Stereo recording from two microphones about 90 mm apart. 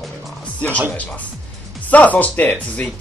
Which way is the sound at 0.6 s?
15° left (ahead or behind).